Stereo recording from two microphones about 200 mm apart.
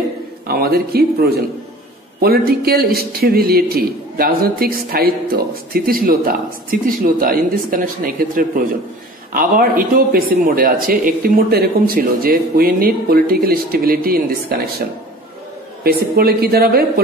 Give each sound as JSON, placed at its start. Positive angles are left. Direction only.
{"t": 0.5, "sound": "a man's voice", "side_deg": -50}
{"t": 15.8, "sound": "a man's voice", "side_deg": -50}